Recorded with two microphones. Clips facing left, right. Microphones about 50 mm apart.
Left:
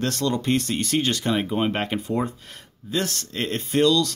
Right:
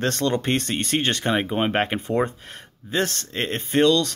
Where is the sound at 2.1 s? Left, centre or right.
Right.